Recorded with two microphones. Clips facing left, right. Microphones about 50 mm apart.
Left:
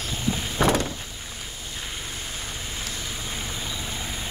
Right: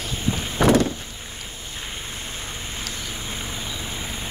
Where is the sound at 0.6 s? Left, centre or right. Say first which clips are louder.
Right 4 dB; right.